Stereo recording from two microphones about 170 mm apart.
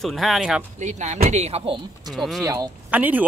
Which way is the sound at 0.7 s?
45° right (ahead or behind).